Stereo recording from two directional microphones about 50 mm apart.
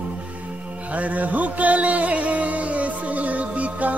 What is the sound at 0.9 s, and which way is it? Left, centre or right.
Music, right.